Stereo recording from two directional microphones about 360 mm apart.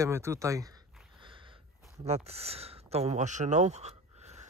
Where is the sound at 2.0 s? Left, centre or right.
Centre.